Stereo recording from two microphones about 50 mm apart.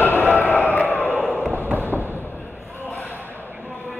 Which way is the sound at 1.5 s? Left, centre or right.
Right.